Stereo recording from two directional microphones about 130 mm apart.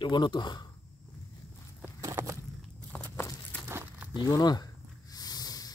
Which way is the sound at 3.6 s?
15° right (ahead or behind).